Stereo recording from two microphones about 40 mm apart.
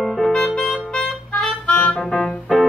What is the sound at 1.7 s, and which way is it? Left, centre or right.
Music, left.